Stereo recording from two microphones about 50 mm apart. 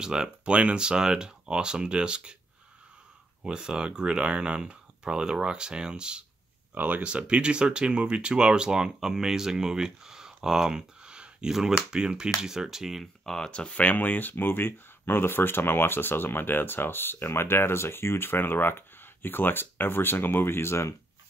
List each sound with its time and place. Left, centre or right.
0.0 s speech: centre
3.4 s speech: centre
6.7 s speech: right
7.0 s speech: right
13.0 s speech: centre
13.5 s speech: left
14.3 s speech: left